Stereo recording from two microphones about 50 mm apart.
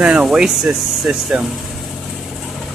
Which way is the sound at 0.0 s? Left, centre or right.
Right.